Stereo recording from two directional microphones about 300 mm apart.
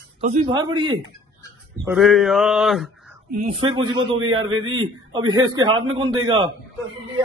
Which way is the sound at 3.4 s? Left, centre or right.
Centre.